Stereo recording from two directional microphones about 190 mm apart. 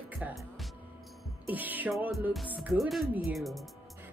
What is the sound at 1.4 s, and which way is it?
Music, 10° right (ahead or behind).